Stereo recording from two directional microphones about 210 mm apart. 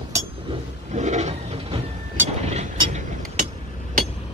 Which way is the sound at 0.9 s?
35° right (ahead or behind).